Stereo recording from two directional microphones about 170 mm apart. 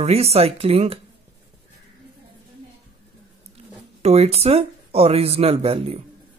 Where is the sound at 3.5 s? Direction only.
40° right (ahead or behind).